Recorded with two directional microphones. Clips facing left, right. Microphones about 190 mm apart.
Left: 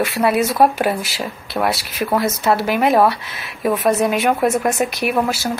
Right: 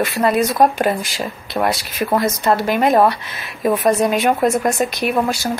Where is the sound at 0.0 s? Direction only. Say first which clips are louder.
Even; 5° left (ahead or behind).